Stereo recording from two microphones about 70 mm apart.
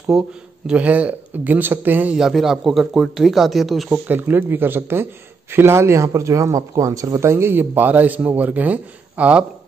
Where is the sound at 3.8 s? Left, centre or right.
Right.